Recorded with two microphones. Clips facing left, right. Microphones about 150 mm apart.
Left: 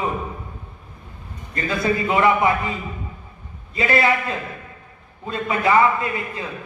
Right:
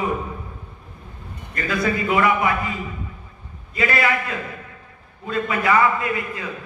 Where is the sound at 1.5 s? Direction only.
25° left (ahead or behind).